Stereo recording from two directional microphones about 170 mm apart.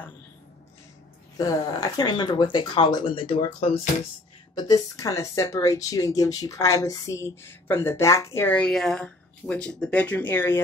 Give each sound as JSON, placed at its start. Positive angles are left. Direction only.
{"t": 1.4, "sound": "speech", "side_deg": 20}
{"t": 4.6, "sound": "speech", "side_deg": 20}